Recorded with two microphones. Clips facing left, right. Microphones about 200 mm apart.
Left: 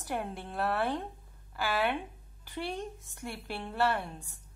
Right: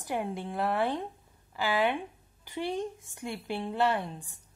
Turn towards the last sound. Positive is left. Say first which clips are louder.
# right 3 dB
turn(degrees=-15)  # may be behind; listen again after turning